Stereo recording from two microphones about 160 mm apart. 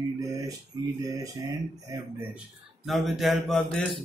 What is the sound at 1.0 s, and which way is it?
Speech, 20° right (ahead or behind).